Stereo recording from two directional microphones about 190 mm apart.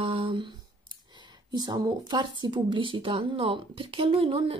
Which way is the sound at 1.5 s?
20° right (ahead or behind).